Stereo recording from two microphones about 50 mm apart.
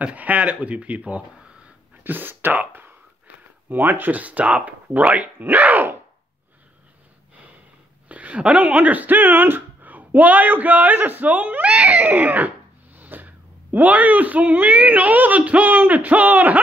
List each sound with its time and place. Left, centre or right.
0.0 s speech: right
2.0 s speech: right
8.1 s speech: right